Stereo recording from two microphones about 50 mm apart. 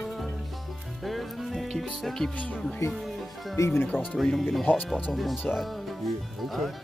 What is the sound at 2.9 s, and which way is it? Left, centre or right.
Music, centre.